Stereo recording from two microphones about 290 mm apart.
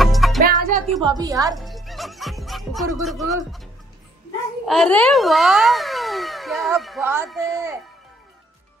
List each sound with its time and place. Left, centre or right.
0.0 s music: centre
0.6 s music: right
1.0 s a woman's voice: centre
1.6 s music: centre
4.6 s speech: centre